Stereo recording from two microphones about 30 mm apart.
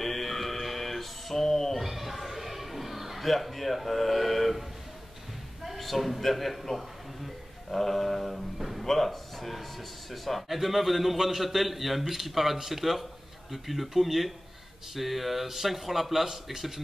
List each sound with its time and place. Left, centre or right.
0.0 s music: centre
1.8 s a sound: centre
3.3 s speech: centre
5.8 s speech: centre
7.7 s mantra: centre
8.5 s a sound: centre
8.8 s speech: centre